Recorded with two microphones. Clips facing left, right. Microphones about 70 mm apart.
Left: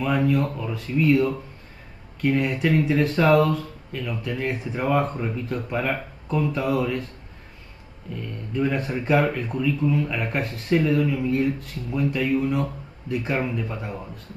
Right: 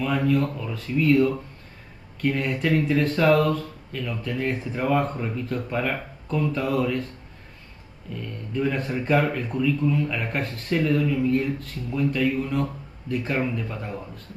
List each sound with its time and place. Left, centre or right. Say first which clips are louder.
0.0 s speech: left 1 dB; centre
8.1 s speech: left 1 dB; centre